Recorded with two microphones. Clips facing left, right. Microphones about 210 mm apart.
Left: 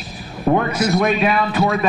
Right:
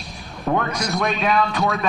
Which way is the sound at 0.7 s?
5° left (ahead or behind).